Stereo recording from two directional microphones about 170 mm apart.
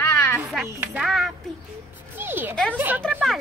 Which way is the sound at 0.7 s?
5° right (ahead or behind).